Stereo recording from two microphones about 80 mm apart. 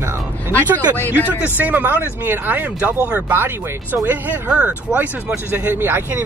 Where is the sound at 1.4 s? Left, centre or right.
Right.